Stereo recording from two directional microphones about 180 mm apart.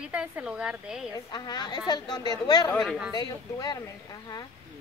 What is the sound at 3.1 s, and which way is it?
A woman's voice, 20° left (ahead or behind).